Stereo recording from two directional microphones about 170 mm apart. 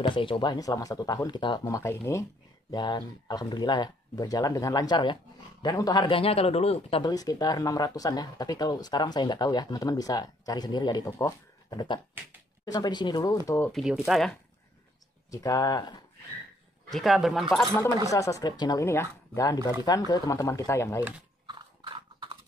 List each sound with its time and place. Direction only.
0.0 s speech: 30° left (ahead or behind)
13.6 s speech: centre (ahead or behind)
15.3 s speech: 20° left (ahead or behind)
16.9 s speech: centre (ahead or behind)
18.1 s speech: 20° left (ahead or behind)
21.5 s clip-clop: 25° right (ahead or behind)